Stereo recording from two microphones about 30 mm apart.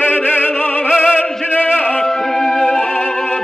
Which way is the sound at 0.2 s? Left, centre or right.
Left.